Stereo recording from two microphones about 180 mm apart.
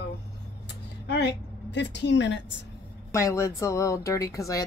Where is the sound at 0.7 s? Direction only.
70° left (ahead or behind).